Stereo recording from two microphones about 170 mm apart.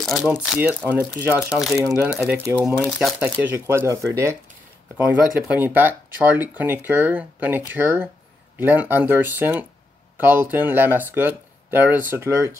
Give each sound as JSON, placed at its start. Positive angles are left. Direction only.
{"t": 0.0, "sound": "speech", "side_deg": 0}
{"t": 5.5, "sound": "speech", "side_deg": -10}